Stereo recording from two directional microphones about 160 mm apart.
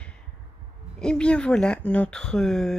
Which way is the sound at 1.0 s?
5° left (ahead or behind).